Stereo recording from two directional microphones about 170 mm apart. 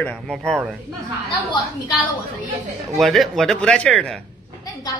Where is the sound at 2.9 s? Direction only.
Centre (ahead or behind).